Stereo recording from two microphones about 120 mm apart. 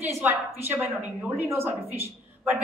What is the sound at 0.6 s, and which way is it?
A woman's voice, 15° right (ahead or behind).